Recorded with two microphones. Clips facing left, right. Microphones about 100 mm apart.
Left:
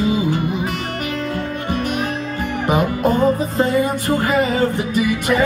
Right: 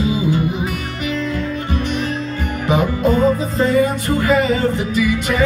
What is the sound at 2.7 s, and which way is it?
Music, 50° left (ahead or behind).